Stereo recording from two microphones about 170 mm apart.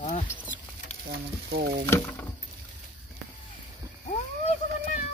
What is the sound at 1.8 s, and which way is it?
Speech, 15° left (ahead or behind).